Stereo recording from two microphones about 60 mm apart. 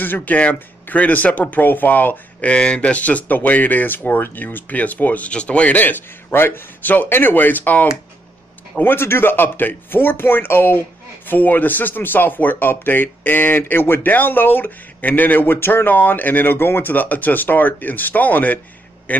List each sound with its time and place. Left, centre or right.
0.0 s speech: left
2.5 s speech: centre